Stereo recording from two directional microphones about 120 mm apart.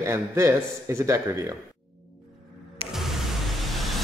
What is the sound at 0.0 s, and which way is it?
A man's voice, 25° right (ahead or behind).